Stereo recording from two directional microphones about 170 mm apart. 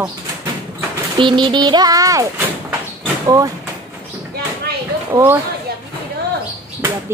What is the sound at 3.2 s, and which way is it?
Speech, 20° right (ahead or behind).